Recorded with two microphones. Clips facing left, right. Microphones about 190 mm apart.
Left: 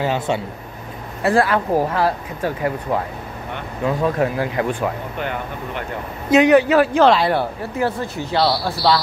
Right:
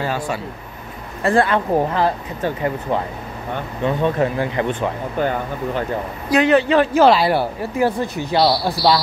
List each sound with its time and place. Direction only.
0.0 s a man's voice: 20° left (ahead or behind)
1.2 s speech: 5° left (ahead or behind)
5.2 s speech: 35° right (ahead or behind)
6.3 s a man's voice: 15° left (ahead or behind)
6.9 s speech: 5° right (ahead or behind)